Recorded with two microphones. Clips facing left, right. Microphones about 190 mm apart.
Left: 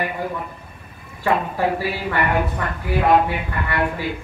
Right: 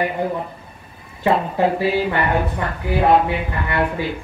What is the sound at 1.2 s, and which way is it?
Speech, 20° right (ahead or behind).